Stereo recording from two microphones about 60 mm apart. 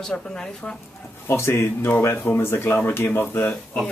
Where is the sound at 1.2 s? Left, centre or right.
Left.